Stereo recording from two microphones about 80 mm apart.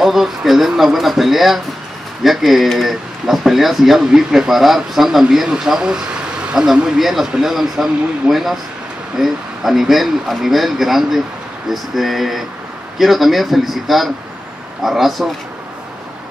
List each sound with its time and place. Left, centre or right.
0.0 s speech: centre